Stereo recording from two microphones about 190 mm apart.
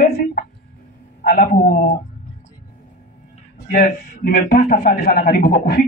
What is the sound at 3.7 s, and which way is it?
A man's voice, 50° left (ahead or behind).